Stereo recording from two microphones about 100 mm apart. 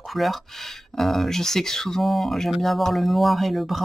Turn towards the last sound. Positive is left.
turn(degrees=0)  # may be behind; listen again after turning